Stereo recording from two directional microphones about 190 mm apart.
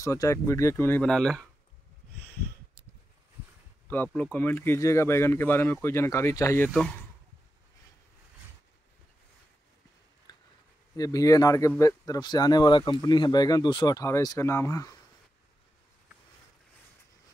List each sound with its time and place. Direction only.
0.0 s speech: 15° left (ahead or behind)
3.8 s speech: 10° left (ahead or behind)
6.7 s speech: 5° left (ahead or behind)
10.3 s a sound: 20° left (ahead or behind)
11.0 s speech: 20° left (ahead or behind)